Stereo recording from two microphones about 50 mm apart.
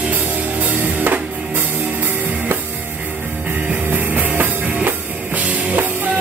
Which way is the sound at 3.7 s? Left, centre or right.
Right.